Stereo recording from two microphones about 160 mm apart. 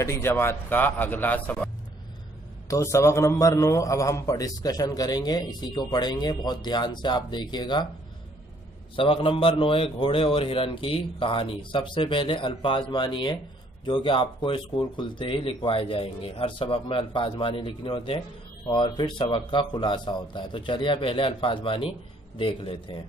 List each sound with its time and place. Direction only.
0.0 s a man's voice: 15° left (ahead or behind)
2.7 s a man's voice: 20° left (ahead or behind)
8.9 s a man's voice: 35° left (ahead or behind)